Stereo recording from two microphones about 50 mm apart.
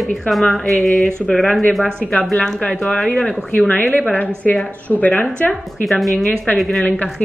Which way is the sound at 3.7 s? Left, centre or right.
Left.